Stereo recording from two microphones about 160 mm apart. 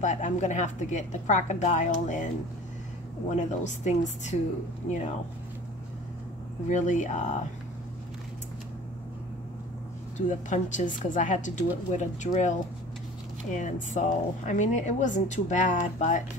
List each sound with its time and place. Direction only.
0.0 s speech: 50° left (ahead or behind)
6.7 s speech: 50° left (ahead or behind)
10.1 s speech: 50° left (ahead or behind)